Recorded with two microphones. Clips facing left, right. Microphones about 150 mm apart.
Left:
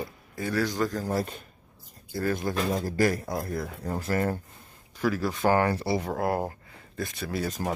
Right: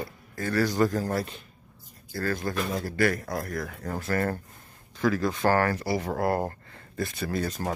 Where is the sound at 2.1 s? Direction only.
20° left (ahead or behind).